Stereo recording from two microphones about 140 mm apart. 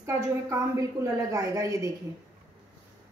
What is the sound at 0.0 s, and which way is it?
A woman's voice, 25° right (ahead or behind).